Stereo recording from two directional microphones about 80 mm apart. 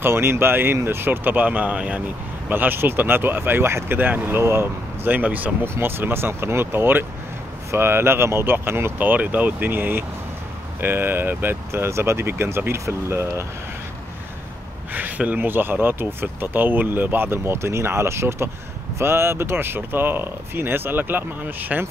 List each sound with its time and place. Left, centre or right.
0.0 s speech: right
14.9 s speech: right